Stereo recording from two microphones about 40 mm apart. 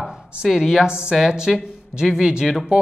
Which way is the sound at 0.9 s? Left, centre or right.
Right.